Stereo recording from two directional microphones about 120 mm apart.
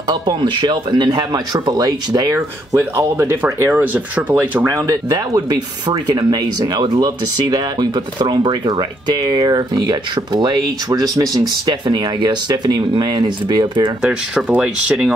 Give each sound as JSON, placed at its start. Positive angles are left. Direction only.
{"t": 0.1, "sound": "speech", "side_deg": -35}
{"t": 4.6, "sound": "speech", "side_deg": -30}
{"t": 14.0, "sound": "speech", "side_deg": -10}